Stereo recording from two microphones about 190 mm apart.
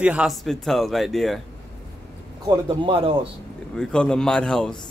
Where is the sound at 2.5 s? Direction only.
30° right (ahead or behind).